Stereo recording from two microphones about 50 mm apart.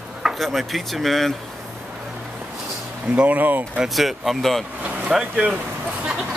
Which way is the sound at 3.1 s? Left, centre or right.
Right.